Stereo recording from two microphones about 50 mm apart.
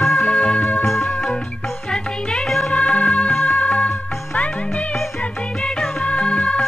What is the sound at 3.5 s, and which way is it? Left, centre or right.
Music, left.